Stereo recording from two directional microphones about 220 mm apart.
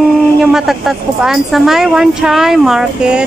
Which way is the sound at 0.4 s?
Centre (ahead or behind).